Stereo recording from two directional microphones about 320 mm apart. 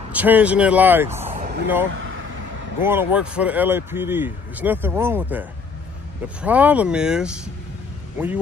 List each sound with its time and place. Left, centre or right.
0.1 s speech: centre
1.3 s a sound: right
2.8 s speech: centre